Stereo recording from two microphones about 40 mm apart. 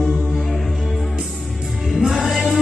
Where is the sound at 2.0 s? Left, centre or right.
Centre.